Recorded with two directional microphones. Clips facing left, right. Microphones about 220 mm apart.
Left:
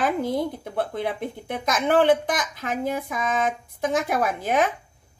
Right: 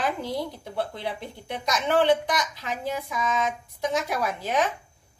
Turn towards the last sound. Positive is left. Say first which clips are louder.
# left 3 dB
turn(degrees=50)  # may be behind; listen again after turning